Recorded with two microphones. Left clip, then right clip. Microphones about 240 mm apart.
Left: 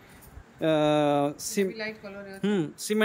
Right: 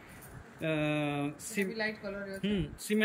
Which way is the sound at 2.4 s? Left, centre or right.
Centre.